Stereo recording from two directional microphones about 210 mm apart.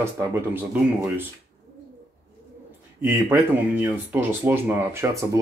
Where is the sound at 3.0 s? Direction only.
10° right (ahead or behind).